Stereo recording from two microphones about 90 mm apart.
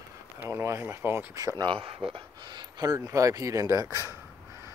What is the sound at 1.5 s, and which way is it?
Speech, 75° right (ahead or behind).